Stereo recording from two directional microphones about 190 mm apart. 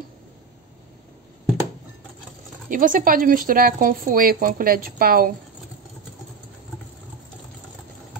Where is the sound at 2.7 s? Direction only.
45° right (ahead or behind).